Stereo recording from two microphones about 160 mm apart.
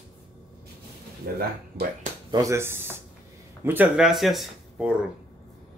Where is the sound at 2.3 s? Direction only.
20° right (ahead or behind); by 4.9 s centre (ahead or behind).